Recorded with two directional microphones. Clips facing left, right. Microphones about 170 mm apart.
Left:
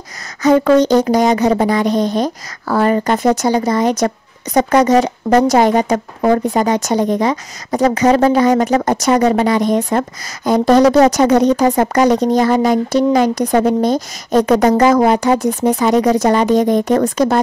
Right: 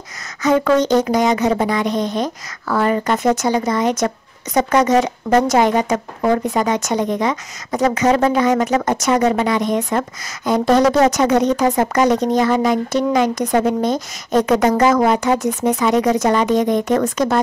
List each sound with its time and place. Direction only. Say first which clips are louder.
0.4 s speech: left 4 dB; 35° left (ahead or behind)